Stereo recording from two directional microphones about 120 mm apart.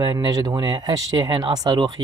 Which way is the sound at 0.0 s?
35° right (ahead or behind).